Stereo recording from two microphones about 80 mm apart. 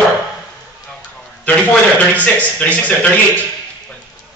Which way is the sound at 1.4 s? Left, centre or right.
Centre.